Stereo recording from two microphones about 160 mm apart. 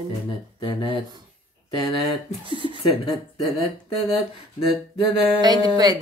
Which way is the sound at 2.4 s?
30° right (ahead or behind).